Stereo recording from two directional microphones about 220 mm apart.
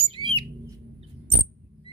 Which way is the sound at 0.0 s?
25° right (ahead or behind).